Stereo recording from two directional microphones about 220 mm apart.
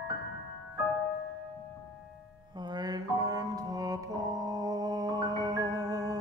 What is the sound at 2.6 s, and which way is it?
Mantra, 20° right (ahead or behind).